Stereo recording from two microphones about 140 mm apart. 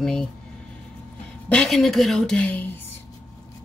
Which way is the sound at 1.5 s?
5° left (ahead or behind).